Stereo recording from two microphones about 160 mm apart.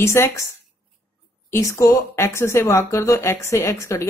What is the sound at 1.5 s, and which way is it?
Speech, 20° left (ahead or behind).